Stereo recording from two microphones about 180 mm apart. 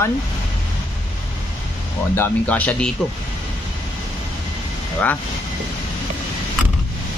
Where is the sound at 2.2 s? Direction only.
10° left (ahead or behind).